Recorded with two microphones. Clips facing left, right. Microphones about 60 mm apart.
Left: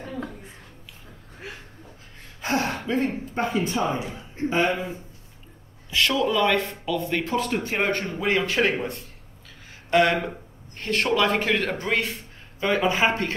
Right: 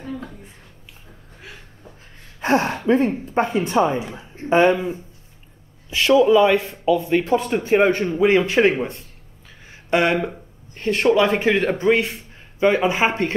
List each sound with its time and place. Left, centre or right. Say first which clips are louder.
2.4 s speech: right 7 dB; right
5.9 s speech: right 8 dB; centre
9.8 s a sound: right 1 dB; right
10.8 s a man's voice: right 6 dB; centre